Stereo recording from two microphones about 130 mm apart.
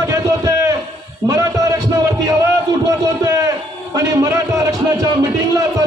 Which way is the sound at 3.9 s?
25° right (ahead or behind).